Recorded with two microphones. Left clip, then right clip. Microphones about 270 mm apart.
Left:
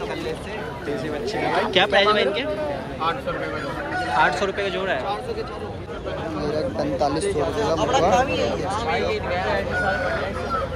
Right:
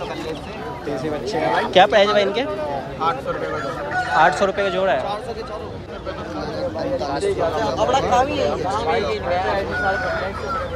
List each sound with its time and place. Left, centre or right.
1.3 s speech: right
4.1 s speech: right
6.8 s speech: centre
7.5 s speech: right